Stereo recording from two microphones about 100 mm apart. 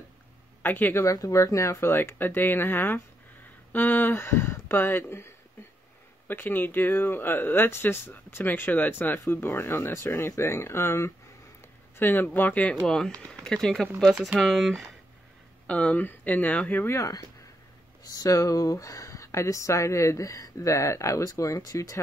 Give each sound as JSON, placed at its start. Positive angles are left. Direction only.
{"t": 0.6, "sound": "speech", "side_deg": 20}
{"t": 1.0, "sound": "speech", "side_deg": 35}
{"t": 12.8, "sound": "speech", "side_deg": 5}
{"t": 15.6, "sound": "speech", "side_deg": 10}
{"t": 18.0, "sound": "speech", "side_deg": 40}